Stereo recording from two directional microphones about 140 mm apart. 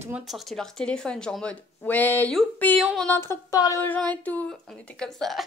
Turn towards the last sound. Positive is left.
turn(degrees=0)  # may be behind; listen again after turning